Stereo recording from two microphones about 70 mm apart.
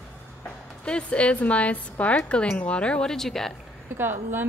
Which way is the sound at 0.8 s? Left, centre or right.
Centre.